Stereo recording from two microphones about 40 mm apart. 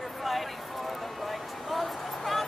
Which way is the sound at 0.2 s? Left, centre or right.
Centre.